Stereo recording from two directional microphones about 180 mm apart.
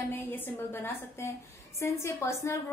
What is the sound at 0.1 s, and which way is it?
A woman's voice, 10° left (ahead or behind).